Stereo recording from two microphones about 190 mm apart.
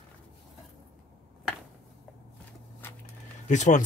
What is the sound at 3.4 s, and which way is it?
Speech, 40° left (ahead or behind).